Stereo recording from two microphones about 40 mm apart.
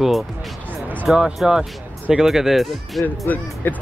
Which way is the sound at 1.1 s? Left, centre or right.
Centre.